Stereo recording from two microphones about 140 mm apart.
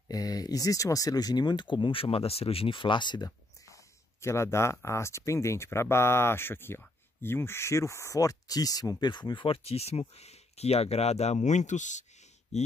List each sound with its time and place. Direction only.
0.1 s speech: 25° left (ahead or behind); by 12.7 s 50° left (ahead or behind)